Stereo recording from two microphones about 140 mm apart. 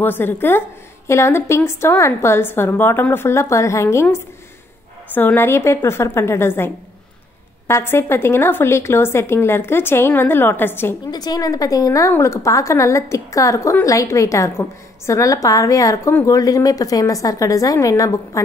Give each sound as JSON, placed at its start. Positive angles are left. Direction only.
{"t": 0.0, "sound": "a woman's voice", "side_deg": 15}
{"t": 11.1, "sound": "a woman's voice", "side_deg": 30}